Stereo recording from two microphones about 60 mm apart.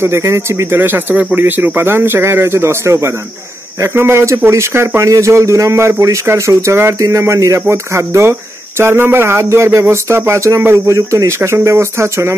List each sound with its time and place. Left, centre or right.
0.0 s speech: right
5.0 s speech: right